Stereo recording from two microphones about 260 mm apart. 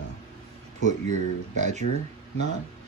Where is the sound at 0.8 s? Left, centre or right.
Right.